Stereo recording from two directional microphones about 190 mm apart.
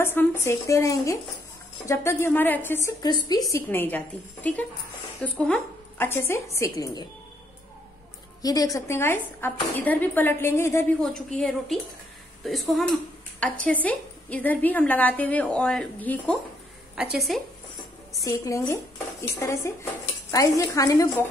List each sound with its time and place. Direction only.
0.0 s speech: 10° left (ahead or behind)
8.4 s speech: 20° left (ahead or behind)
16.9 s a woman's voice: 5° right (ahead or behind)
18.2 s speech: 15° left (ahead or behind)